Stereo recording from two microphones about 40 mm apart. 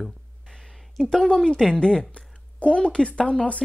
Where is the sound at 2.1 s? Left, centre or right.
Left.